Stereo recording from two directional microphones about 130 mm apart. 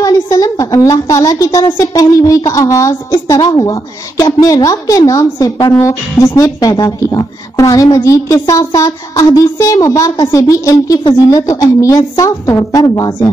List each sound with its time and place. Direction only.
0.0 s a woman's voice: 25° left (ahead or behind)